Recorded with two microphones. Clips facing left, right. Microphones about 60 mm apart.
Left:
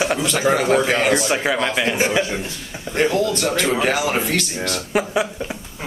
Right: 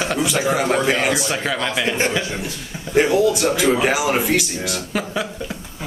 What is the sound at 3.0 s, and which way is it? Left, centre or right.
Speech, centre.